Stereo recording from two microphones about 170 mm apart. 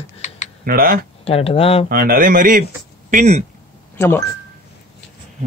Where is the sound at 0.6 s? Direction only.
60° right (ahead or behind).